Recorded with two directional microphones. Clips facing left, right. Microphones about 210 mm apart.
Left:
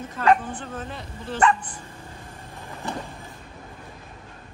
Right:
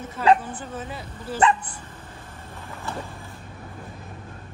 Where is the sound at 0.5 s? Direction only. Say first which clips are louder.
Even; 5° right (ahead or behind).